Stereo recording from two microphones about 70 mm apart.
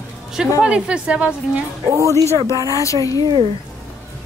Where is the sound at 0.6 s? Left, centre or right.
Centre.